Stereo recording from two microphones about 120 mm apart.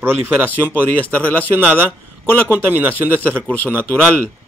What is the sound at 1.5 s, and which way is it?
Speech, 10° right (ahead or behind).